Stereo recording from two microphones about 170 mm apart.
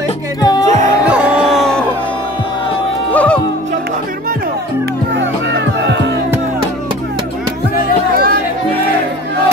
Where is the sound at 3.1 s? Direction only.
10° left (ahead or behind).